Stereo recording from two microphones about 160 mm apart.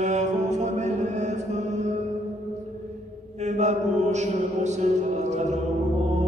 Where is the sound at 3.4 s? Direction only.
45° right (ahead or behind).